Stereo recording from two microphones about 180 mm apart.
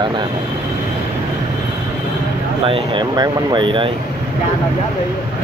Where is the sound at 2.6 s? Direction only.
30° right (ahead or behind).